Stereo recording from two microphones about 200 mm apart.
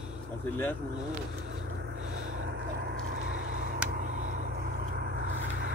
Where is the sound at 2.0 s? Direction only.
75° right (ahead or behind); by 3.3 s 55° right (ahead or behind).